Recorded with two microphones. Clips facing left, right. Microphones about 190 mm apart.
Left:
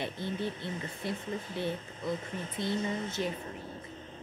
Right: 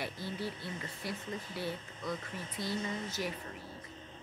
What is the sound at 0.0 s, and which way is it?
Speech, 25° left (ahead or behind).